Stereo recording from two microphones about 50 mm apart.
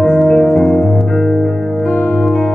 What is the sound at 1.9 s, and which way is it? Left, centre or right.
Music, left.